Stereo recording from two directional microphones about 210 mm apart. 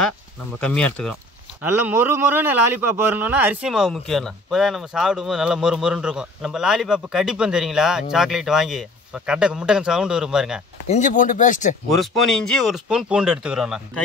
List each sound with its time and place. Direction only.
0.6 s a man's voice: 5° left (ahead or behind)
1.6 s a man's voice: 10° right (ahead or behind)
10.9 s speech: 35° left (ahead or behind)
11.9 s a man's voice: centre (ahead or behind)